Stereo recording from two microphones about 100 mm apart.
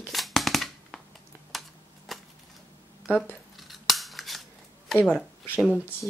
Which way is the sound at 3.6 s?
Centre (ahead or behind).